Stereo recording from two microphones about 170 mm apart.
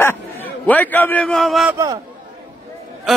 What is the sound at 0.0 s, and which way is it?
A man's voice, 10° left (ahead or behind).